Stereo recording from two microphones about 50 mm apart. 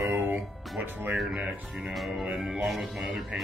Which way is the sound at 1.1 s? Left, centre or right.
Centre.